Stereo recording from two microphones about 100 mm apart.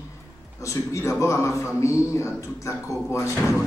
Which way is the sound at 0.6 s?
30° left (ahead or behind).